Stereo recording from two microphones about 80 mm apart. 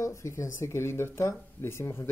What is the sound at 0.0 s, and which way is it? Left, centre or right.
Speech, left.